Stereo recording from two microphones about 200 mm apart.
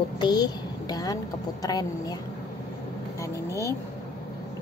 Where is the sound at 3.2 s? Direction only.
15° left (ahead or behind).